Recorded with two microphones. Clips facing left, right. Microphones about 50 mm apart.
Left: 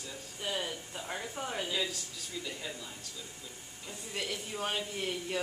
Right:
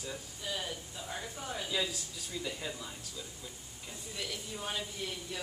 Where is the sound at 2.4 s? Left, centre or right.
Centre.